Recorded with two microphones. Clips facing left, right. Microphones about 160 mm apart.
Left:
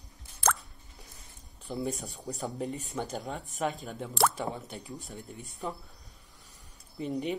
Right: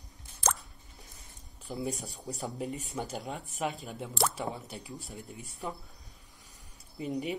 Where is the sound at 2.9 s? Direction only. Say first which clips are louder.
Left 1 dB; 5° right (ahead or behind).